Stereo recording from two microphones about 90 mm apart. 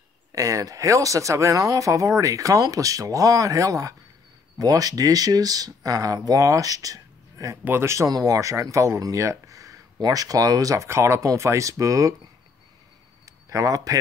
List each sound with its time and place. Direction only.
0.3 s speech: 40° right (ahead or behind)
7.6 s speech: 25° right (ahead or behind)
10.9 s speech: 30° right (ahead or behind)
13.2 s a sound: 35° right (ahead or behind)